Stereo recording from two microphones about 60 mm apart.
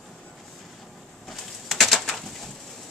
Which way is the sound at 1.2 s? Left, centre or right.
Centre.